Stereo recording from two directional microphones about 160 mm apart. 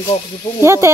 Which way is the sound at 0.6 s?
15° right (ahead or behind).